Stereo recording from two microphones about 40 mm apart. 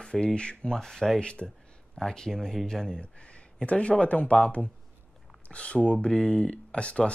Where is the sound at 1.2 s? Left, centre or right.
Left.